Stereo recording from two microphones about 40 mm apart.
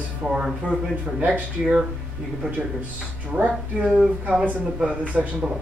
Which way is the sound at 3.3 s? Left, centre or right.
Right.